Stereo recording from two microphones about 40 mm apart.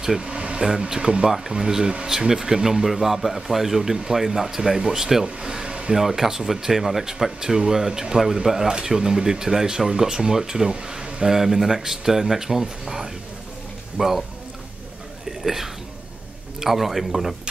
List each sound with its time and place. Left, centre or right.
0.2 s a sound: right
0.7 s speech: centre
5.9 s speech: centre
15.4 s a man's voice: centre